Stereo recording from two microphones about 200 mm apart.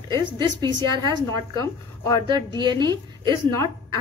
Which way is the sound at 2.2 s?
20° right (ahead or behind).